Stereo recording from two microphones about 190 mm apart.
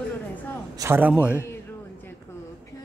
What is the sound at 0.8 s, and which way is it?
Speech, 10° right (ahead or behind).